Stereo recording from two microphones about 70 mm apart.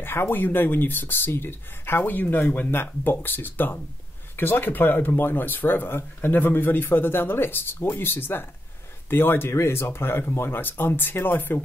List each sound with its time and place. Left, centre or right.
0.0 s speech: left